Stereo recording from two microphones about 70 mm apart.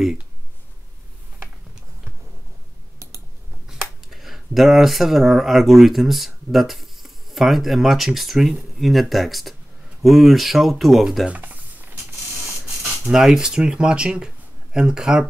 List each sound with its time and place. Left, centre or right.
3.6 s speech: centre
11.2 s computer keyboard: right
12.6 s speech: centre